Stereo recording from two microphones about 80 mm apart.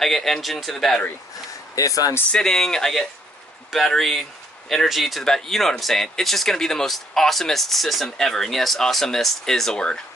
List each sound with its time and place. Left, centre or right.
0.0 s speech: centre
1.8 s speech: left
2.3 s speech: centre